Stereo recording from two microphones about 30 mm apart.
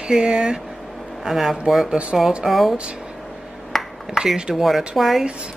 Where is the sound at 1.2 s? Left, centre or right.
Centre.